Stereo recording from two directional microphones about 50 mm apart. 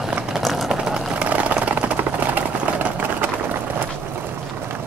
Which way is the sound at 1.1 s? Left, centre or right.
Right.